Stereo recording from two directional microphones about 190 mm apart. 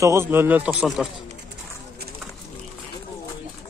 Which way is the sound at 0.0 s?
15° right (ahead or behind).